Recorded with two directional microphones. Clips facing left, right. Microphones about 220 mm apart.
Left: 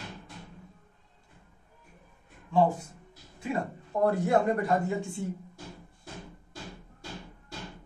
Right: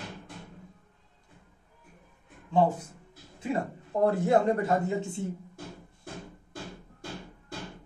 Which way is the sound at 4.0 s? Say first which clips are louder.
Right 1 dB; 25° right (ahead or behind).